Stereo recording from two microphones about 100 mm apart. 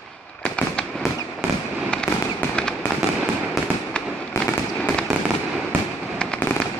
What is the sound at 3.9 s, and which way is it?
Fireworks, 10° left (ahead or behind).